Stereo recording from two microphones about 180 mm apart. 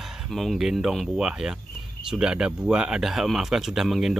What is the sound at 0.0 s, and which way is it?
Speech, centre (ahead or behind).